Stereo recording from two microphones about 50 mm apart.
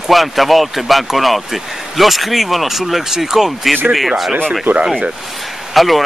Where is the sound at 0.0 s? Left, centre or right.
Centre.